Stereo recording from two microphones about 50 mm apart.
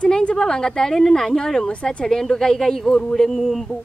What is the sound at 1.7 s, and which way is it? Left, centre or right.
Speech, left.